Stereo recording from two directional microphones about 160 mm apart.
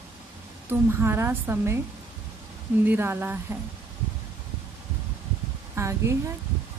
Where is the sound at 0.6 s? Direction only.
15° right (ahead or behind).